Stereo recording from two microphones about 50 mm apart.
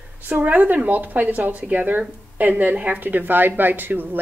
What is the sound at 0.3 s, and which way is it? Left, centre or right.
Speech, right.